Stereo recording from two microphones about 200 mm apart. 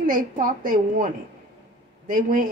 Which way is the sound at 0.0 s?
45° right (ahead or behind).